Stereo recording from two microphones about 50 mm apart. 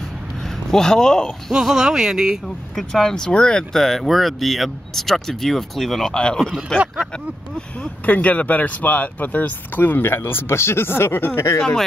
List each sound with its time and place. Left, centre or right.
0.7 s speech: centre
1.5 s speech: centre
2.4 s speech: centre
3.7 s speech: centre
6.1 s speech: centre
8.0 s speech: left
10.1 s speech: left